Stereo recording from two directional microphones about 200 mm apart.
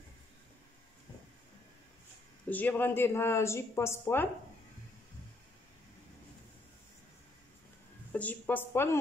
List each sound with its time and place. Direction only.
2.5 s speech: 10° left (ahead or behind)
8.1 s speech: 10° left (ahead or behind)